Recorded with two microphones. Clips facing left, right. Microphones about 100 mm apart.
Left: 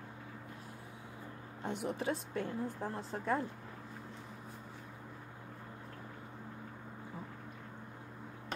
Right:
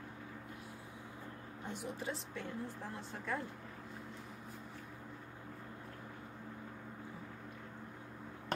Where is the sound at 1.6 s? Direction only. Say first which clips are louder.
Left 6 dB; 70° left (ahead or behind).